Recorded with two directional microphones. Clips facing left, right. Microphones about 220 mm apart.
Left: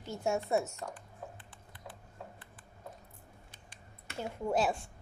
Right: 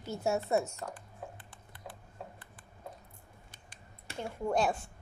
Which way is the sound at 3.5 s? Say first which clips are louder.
Even; 45° right (ahead or behind).